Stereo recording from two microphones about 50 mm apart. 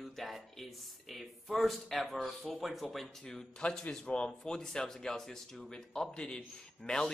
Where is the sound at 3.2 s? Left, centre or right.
Centre.